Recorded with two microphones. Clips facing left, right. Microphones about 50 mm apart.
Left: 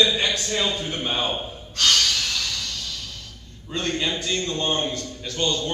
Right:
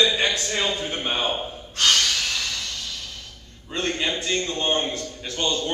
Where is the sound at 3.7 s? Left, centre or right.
Right.